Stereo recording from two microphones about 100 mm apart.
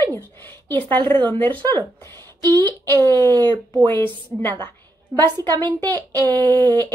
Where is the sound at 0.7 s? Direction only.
20° left (ahead or behind).